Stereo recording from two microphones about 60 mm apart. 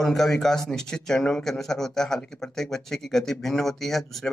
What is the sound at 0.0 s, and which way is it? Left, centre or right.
A man's voice, centre.